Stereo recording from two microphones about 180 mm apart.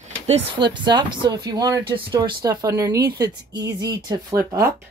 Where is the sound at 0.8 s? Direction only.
25° right (ahead or behind).